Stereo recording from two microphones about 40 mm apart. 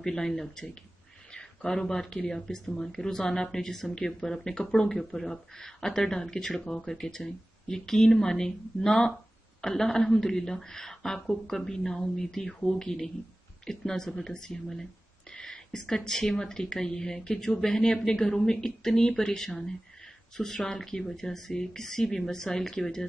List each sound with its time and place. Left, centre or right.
0.0 s speech: centre